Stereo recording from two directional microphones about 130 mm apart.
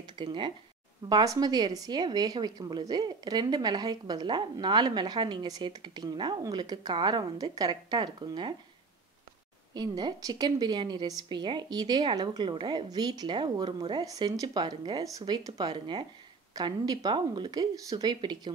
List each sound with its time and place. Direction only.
0.0 s a sound: 35° right (ahead or behind)
1.0 s a woman's voice: 30° right (ahead or behind)
9.8 s a woman's voice: 30° right (ahead or behind)